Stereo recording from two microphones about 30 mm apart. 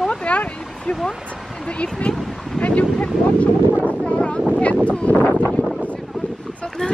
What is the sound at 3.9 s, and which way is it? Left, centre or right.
Wind noise, left.